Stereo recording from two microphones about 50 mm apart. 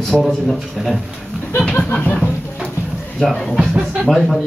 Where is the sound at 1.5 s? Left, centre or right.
Left.